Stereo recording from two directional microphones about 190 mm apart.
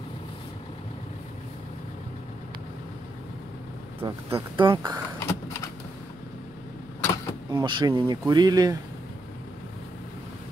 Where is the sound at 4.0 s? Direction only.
30° right (ahead or behind).